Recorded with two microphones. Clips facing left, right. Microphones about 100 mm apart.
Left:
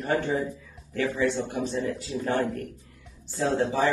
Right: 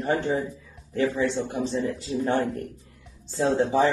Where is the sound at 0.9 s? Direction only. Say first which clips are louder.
Right 2 dB; 25° right (ahead or behind).